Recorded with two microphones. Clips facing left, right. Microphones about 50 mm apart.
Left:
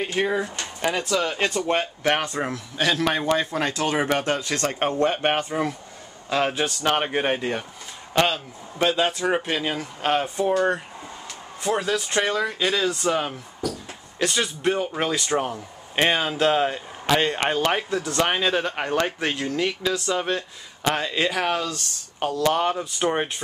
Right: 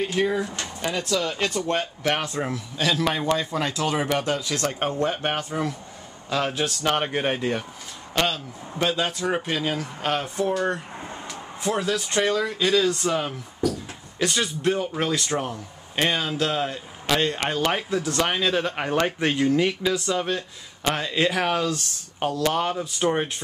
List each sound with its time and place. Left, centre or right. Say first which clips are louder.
0.0 s a man's voice: even; left
2.8 s speech: left 1 dB; left
3.1 s a man's voice: left 1 dB; centre
3.3 s speech: left 2 dB; left
4.2 s speech: left 1 dB; left
4.6 s speech: left 3 dB; centre
5.4 s a man's voice: left 2 dB; centre
17.6 s a man's voice: left 1 dB; centre
20.1 s a man's voice: left 1 dB; centre